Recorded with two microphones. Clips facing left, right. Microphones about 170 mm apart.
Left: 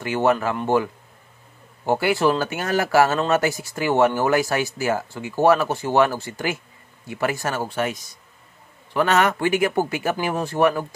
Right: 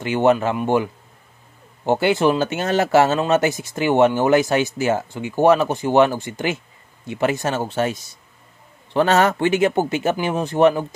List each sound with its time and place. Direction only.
0.0 s a man's voice: 20° right (ahead or behind)
1.9 s speech: 20° right (ahead or behind)